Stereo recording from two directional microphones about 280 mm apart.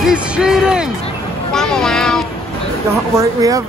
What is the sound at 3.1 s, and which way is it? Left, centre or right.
Speech, centre.